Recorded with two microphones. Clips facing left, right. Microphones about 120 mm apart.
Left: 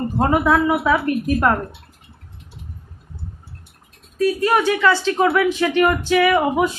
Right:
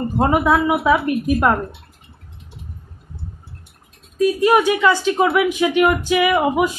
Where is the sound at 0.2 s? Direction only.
10° right (ahead or behind).